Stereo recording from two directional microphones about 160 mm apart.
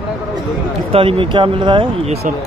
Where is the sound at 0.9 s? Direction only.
35° right (ahead or behind).